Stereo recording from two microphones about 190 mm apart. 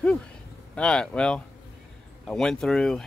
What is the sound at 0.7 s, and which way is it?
Speech, 5° left (ahead or behind).